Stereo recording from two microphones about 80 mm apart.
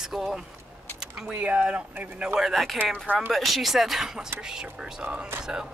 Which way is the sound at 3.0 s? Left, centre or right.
Centre.